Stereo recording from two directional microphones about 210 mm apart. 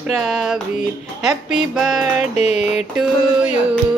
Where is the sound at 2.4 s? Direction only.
30° left (ahead or behind).